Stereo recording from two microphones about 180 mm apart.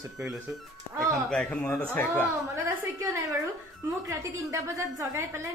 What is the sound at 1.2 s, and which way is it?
A man's voice, 5° left (ahead or behind).